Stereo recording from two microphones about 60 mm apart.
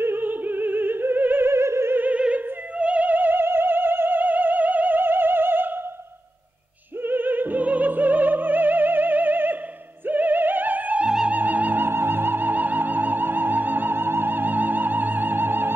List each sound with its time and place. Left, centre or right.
0.0 s opera: right
1.5 s opera: right
2.0 s opera: right
7.0 s music: right
11.1 s music: centre
11.3 s music: right